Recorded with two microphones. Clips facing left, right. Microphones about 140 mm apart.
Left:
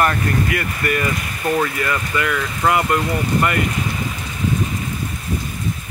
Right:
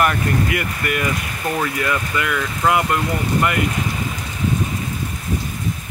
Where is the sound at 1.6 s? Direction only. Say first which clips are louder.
Even; 5° right (ahead or behind).